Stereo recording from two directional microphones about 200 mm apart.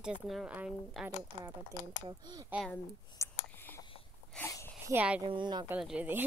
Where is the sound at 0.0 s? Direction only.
Centre (ahead or behind).